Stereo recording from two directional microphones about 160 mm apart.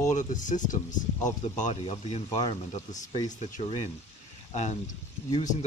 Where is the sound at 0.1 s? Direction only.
50° left (ahead or behind).